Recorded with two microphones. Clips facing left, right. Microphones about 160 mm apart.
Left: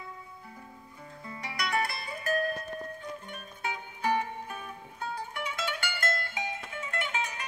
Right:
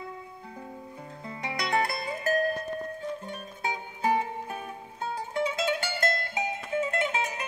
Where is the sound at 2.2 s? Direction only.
40° right (ahead or behind).